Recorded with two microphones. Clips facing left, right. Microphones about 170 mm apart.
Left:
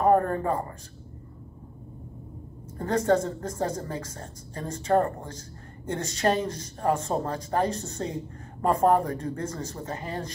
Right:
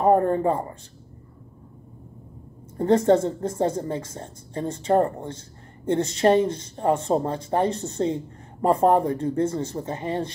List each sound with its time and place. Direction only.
0.0 s speech: 25° right (ahead or behind)
2.8 s speech: 25° right (ahead or behind)